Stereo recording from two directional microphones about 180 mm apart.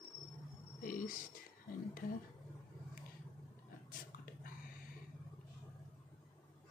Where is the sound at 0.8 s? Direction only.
50° left (ahead or behind).